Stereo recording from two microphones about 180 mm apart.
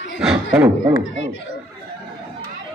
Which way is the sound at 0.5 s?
15° right (ahead or behind).